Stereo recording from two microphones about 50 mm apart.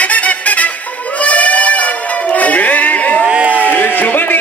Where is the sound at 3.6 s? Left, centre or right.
Left.